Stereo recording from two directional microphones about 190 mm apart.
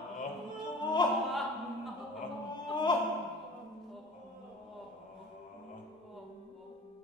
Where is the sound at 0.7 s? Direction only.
25° left (ahead or behind).